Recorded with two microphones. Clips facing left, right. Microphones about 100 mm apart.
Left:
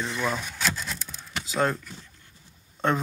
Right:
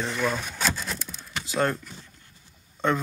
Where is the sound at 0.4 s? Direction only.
10° right (ahead or behind).